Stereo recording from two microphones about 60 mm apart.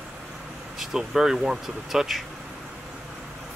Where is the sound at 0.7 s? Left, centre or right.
Centre.